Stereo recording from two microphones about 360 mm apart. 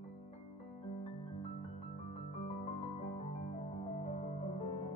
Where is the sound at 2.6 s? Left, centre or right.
Centre.